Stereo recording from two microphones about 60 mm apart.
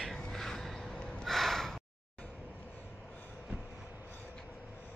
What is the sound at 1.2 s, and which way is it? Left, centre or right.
Gasp, centre.